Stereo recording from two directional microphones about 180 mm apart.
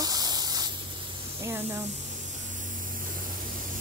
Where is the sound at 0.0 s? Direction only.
20° right (ahead or behind).